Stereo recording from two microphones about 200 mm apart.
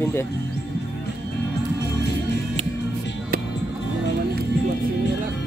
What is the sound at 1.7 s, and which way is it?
Music, 55° left (ahead or behind).